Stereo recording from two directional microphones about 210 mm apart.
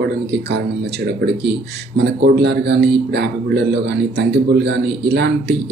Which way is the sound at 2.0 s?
55° right (ahead or behind).